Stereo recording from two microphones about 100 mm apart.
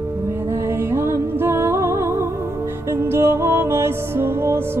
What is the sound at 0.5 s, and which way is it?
Music, 25° right (ahead or behind).